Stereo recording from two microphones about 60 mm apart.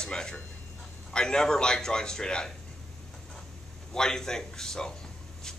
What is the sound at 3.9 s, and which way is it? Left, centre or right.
Speech, centre.